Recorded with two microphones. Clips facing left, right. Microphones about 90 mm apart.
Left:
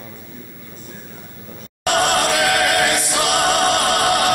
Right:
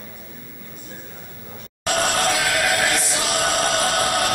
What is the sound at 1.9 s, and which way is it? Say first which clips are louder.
Choir: left 4 dB; 60° left (ahead or behind).